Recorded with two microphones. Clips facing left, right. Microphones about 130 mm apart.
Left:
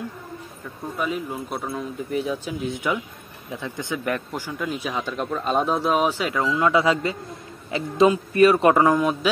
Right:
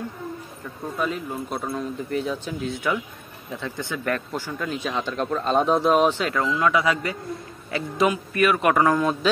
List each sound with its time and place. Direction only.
0.9 s speech: 5° left (ahead or behind)
2.6 s speech: 15° left (ahead or behind)
6.4 s speech: 25° left (ahead or behind)